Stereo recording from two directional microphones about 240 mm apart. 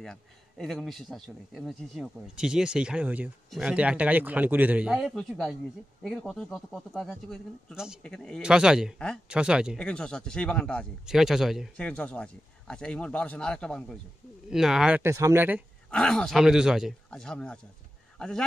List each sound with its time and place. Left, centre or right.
0.0 s speech: centre
15.9 s speech: centre